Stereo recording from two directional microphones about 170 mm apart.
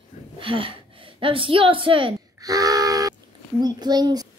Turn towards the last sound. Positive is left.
turn(degrees=-25)  # may be behind; listen again after turning